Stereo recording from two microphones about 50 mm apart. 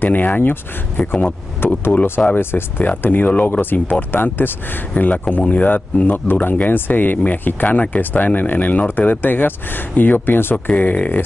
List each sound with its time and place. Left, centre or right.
0.0 s speech: left
2.2 s speech: left
2.8 s speech: left
4.9 s speech: left
10.7 s speech: left